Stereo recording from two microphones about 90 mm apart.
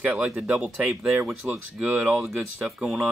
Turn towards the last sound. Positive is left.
turn(degrees=-5)  # may be behind; listen again after turning